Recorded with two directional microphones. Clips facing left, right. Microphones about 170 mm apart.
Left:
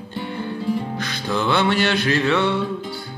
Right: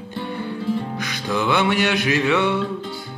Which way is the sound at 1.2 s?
5° right (ahead or behind).